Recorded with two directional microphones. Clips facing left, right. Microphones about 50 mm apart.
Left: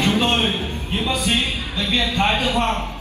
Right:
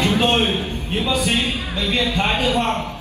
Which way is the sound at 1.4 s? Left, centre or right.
Right.